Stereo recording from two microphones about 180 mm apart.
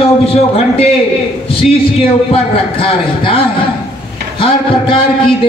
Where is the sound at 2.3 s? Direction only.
30° left (ahead or behind).